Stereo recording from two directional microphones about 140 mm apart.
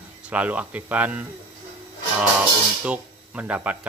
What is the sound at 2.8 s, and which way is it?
Speech, 10° right (ahead or behind).